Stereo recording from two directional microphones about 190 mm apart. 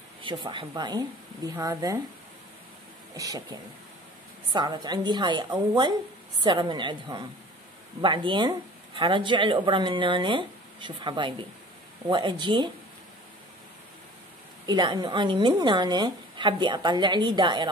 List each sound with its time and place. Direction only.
0.2 s speech: 25° right (ahead or behind)
3.2 s speech: 20° right (ahead or behind)
14.7 s speech: 20° right (ahead or behind)